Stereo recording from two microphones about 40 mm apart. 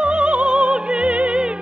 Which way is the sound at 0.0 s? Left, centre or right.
Right.